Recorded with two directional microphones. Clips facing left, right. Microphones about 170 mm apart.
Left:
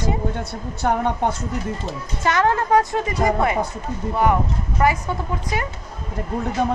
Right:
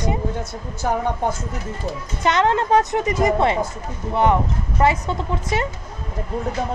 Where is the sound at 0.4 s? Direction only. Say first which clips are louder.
Left 2 dB; 65° left (ahead or behind).